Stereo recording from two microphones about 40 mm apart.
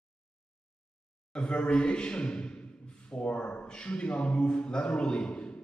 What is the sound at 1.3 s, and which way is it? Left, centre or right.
A man's voice, left.